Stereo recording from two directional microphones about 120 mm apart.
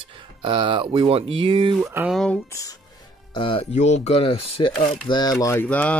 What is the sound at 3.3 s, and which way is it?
Speech, 45° left (ahead or behind).